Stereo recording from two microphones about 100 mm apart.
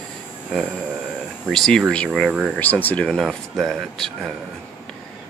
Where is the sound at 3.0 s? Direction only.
5° left (ahead or behind).